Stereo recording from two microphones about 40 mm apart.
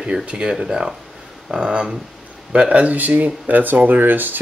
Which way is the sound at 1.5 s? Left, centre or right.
Right.